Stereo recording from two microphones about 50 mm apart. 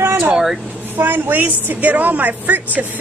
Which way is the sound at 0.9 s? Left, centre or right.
Right.